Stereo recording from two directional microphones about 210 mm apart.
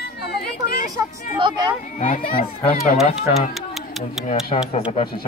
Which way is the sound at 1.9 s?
40° left (ahead or behind).